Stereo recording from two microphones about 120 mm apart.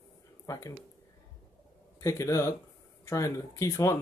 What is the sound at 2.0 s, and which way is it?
Speech, 25° left (ahead or behind).